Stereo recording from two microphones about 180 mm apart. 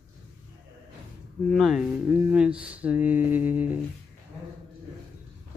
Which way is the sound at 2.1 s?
10° right (ahead or behind).